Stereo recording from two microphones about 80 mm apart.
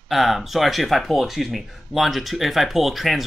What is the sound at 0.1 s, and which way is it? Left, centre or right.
Speech, centre.